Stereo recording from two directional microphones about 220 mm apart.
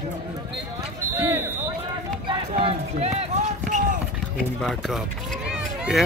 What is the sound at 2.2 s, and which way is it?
Run, 25° right (ahead or behind).